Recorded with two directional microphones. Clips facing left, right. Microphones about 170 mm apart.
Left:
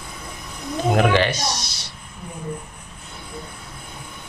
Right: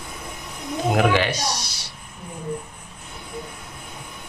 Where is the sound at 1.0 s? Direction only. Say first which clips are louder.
Left 1 dB; 5° right (ahead or behind).